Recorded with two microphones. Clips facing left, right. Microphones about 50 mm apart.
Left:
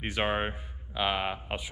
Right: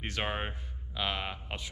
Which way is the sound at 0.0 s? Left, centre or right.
Centre.